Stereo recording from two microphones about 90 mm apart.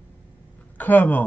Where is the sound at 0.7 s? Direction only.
20° left (ahead or behind).